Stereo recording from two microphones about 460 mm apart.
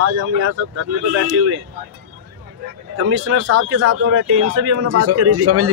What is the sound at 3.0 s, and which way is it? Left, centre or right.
A man's voice, right.